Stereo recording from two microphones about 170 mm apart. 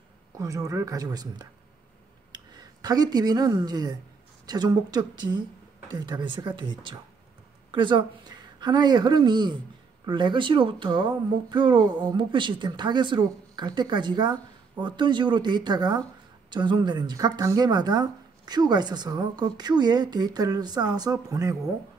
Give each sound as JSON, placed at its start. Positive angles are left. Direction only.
{"t": 0.4, "sound": "speech", "side_deg": -20}